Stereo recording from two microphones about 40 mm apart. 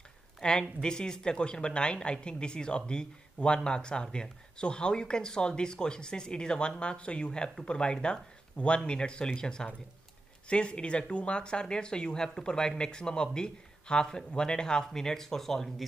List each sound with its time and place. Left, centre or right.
0.4 s speech: centre